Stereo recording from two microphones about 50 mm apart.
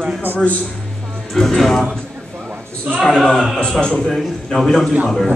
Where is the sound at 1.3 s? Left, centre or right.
Centre.